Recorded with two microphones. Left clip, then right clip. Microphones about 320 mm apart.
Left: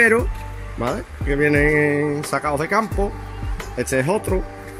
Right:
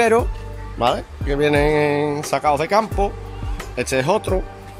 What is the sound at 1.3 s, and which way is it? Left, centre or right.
Speech, right.